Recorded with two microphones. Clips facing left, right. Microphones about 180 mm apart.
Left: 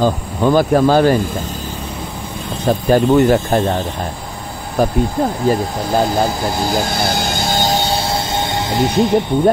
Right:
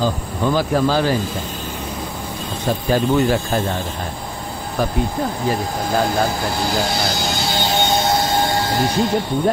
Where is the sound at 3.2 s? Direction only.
40° left (ahead or behind).